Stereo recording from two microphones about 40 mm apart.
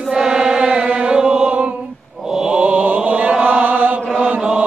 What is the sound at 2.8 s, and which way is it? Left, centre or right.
Chant, right.